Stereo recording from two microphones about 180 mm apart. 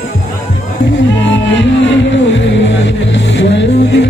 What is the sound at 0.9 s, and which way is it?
Music, 85° left.